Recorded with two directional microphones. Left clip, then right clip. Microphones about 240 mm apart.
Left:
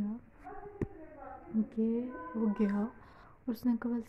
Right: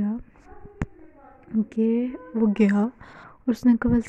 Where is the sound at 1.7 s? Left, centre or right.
Right.